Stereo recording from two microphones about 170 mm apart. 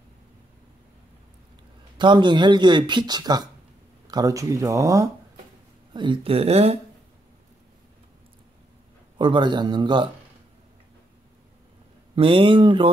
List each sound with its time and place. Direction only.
2.0 s speech: 25° right (ahead or behind)
5.9 s speech: 30° right (ahead or behind)
9.2 s speech: 25° right (ahead or behind)
12.2 s speech: 30° right (ahead or behind)